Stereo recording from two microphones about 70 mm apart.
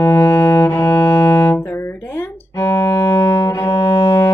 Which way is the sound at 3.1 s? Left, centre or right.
Left.